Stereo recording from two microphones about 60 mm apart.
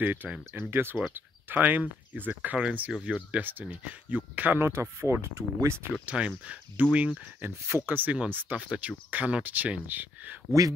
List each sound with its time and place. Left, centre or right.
0.0 s speech: right
4.6 s speech: right
6.0 s speech: centre
7.4 s speech: right
7.9 s speech: right
8.5 s speech: right